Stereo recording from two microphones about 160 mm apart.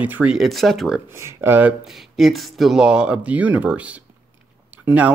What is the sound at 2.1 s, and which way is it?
Speech, centre (ahead or behind).